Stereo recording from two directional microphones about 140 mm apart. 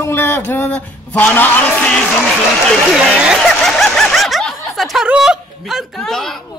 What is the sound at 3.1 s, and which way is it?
Snicker, 5° right (ahead or behind).